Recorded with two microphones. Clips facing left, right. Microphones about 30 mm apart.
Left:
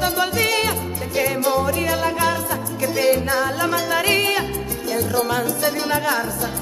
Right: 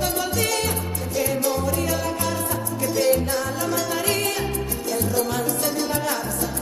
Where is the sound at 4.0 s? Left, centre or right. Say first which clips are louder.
Left 5 dB; left.